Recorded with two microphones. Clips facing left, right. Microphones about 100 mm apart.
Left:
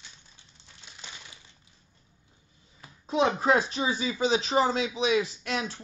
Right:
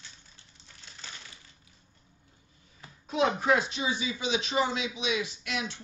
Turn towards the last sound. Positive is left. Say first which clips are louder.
# left 3 dB
turn(degrees=40)  # may be behind; listen again after turning